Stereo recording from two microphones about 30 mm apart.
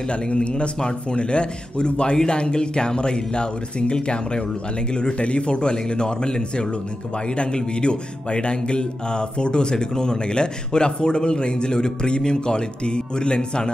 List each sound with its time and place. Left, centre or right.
0.1 s speech: left